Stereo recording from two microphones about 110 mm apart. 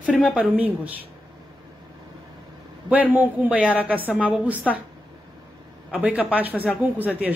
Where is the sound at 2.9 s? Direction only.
15° right (ahead or behind).